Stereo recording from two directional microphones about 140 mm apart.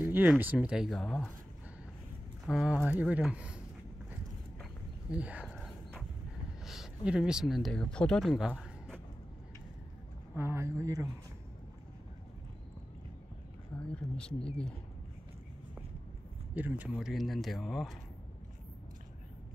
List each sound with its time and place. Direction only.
0.0 s speech: 10° right (ahead or behind)
2.4 s speech: centre (ahead or behind)
5.1 s speech: 10° right (ahead or behind)
5.6 s a sound: centre (ahead or behind)
6.6 s speech: centre (ahead or behind)
10.3 s speech: 20° right (ahead or behind)
14.1 s speech: 5° left (ahead or behind)
16.5 s speech: 10° right (ahead or behind)
17.0 s speech: centre (ahead or behind)